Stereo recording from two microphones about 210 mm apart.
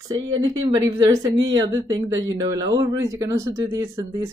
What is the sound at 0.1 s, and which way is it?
Speech, 20° right (ahead or behind).